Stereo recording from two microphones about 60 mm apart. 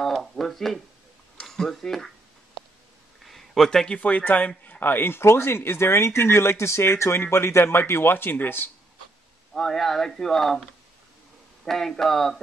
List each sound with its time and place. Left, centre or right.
0.0 s a sound: centre
1.4 s speech: centre
3.3 s a man's voice: centre; by 8.6 s left
9.5 s speech: centre
11.6 s speech: centre